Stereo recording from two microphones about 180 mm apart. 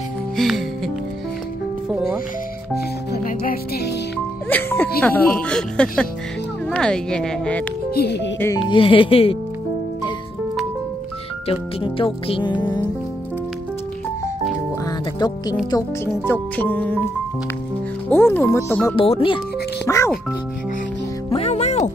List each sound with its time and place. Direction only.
0.4 s music: centre (ahead or behind)
2.7 s music: 55° left (ahead or behind)
4.5 s music: 10° left (ahead or behind)
5.0 s speech: 5° left (ahead or behind)
7.9 s speech: 65° left (ahead or behind)
8.6 s speech: 30° left (ahead or behind)
11.4 s speech: 30° left (ahead or behind)
14.9 s music: 20° left (ahead or behind)
16.1 s speech: 10° left (ahead or behind)
18.1 s speech: 10° left (ahead or behind)
18.9 s speech: 30° left (ahead or behind)
19.9 s speech: 15° left (ahead or behind)
21.3 s music: 35° left (ahead or behind)